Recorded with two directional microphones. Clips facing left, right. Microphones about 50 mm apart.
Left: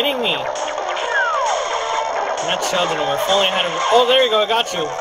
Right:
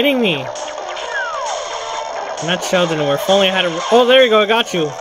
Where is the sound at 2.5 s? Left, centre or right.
Right.